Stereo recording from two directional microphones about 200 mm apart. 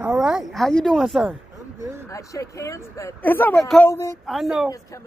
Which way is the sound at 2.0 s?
15° left (ahead or behind).